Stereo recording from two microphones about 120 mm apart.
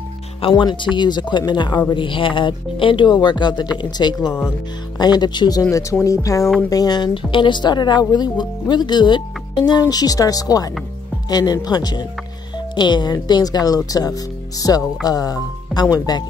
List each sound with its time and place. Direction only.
0.4 s a woman's voice: 45° left (ahead or behind)